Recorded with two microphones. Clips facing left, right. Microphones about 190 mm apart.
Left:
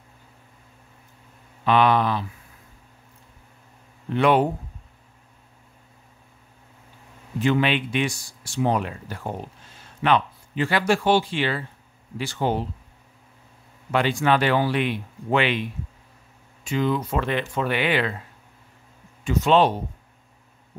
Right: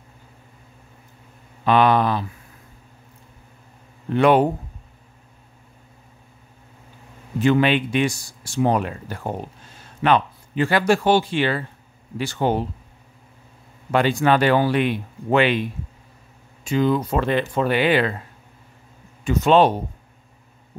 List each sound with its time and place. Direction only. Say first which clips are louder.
1.6 s speech: right 2 dB; 45° right (ahead or behind)
4.1 s speech: right 3 dB; 45° right (ahead or behind)
7.4 s speech: right 4 dB; 45° right (ahead or behind)
13.9 s speech: right 3 dB; 45° right (ahead or behind)
16.6 s speech: right 4 dB; 40° right (ahead or behind)
19.2 s speech: right 3 dB; 50° right (ahead or behind)